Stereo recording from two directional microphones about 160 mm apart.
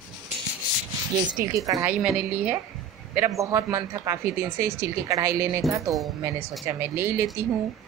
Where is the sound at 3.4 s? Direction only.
20° right (ahead or behind).